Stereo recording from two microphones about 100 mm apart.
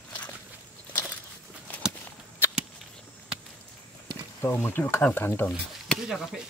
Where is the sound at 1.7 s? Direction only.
15° left (ahead or behind).